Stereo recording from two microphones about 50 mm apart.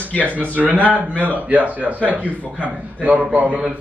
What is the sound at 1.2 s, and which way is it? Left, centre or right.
A man's voice, right.